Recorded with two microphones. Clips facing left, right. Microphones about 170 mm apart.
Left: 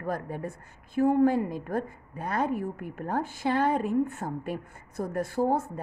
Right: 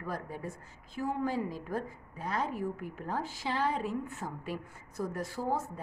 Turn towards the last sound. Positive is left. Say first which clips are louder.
# left 7 dB
turn(degrees=55)  # may be behind; listen again after turning